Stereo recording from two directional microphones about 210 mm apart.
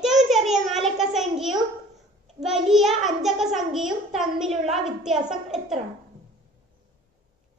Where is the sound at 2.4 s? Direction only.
Centre (ahead or behind).